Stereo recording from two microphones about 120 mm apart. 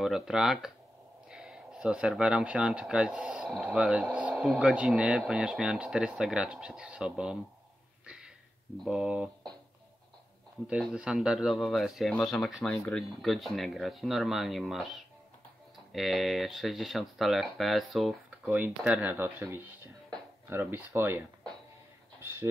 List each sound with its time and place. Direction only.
0.0 s speech: 5° right (ahead or behind)
8.8 s speech: 5° right (ahead or behind)
10.7 s speech: 5° right (ahead or behind)
19.1 s speech: 15° right (ahead or behind)